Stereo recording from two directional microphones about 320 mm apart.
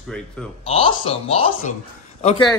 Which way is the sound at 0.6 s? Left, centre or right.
Centre.